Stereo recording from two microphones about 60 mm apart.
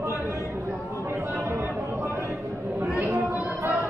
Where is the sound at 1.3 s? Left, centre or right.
Right.